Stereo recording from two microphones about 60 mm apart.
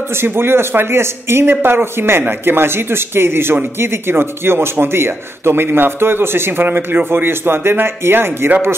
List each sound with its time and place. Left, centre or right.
0.2 s a man's voice: right